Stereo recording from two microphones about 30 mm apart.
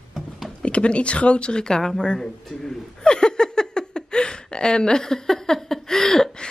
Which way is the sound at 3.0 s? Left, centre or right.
Left.